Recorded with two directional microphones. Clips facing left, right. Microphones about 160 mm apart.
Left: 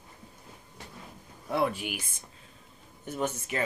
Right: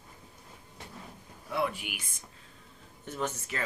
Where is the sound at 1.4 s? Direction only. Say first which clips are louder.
Left 4 dB; 40° left (ahead or behind).